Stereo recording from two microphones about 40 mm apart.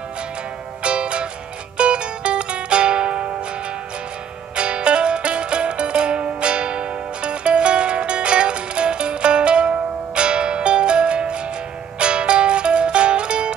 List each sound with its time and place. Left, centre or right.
0.8 s music: right
4.6 s music: right